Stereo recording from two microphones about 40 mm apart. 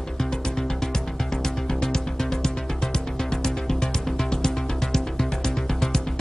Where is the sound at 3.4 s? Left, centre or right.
Centre.